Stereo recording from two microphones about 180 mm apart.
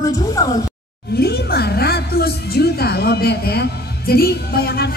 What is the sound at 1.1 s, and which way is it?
Speech, 65° left (ahead or behind).